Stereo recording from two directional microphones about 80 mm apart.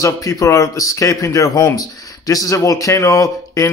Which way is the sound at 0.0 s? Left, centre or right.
Left.